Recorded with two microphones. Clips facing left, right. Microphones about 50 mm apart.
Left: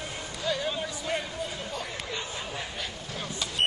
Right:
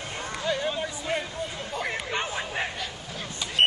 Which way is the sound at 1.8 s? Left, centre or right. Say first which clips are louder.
Right 6 dB; right.